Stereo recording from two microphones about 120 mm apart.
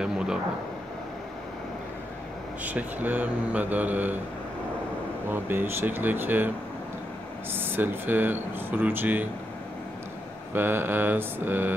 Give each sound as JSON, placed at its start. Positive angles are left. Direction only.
{"t": 2.6, "sound": "speech", "side_deg": -15}
{"t": 5.3, "sound": "speech", "side_deg": -15}
{"t": 7.5, "sound": "speech", "side_deg": -15}
{"t": 10.5, "sound": "speech", "side_deg": -15}